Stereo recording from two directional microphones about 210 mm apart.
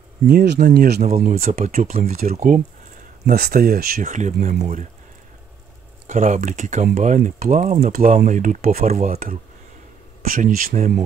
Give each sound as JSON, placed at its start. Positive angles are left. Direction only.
{"t": 0.3, "sound": "speech", "side_deg": -50}
{"t": 1.0, "sound": "speech", "side_deg": -35}
{"t": 6.0, "sound": "speech", "side_deg": -35}